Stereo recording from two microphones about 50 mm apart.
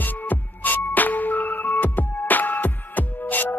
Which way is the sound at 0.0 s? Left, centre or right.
Left.